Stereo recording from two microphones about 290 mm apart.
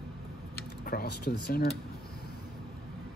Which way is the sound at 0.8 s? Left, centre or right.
Left.